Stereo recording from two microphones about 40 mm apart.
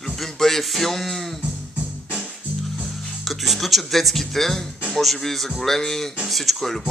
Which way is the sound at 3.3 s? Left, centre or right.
Centre.